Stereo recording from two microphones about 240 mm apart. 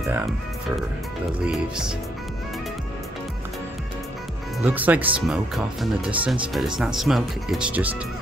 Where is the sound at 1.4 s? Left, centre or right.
Centre.